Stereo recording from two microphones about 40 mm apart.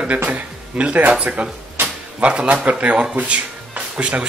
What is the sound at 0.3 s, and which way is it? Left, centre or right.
Speech, right.